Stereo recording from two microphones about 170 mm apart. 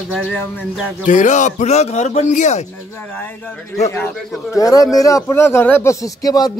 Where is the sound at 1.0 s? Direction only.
45° left (ahead or behind).